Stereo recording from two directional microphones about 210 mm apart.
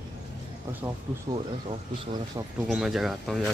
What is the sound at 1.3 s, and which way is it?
Speech, 20° right (ahead or behind).